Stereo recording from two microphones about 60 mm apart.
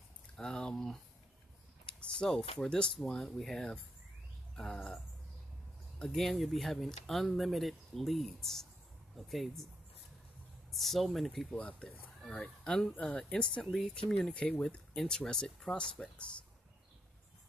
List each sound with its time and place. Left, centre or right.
0.4 s speech: centre
6.0 s speech: centre
10.7 s speech: centre
11.5 s speech: centre
13.7 s speech: centre
14.3 s speech: centre